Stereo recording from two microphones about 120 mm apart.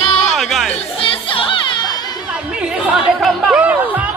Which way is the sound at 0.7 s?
50° left (ahead or behind).